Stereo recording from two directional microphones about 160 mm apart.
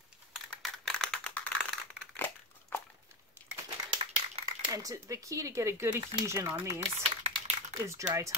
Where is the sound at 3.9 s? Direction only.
30° right (ahead or behind).